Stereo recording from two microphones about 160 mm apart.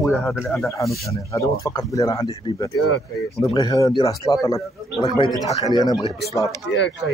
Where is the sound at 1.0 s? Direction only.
20° left (ahead or behind).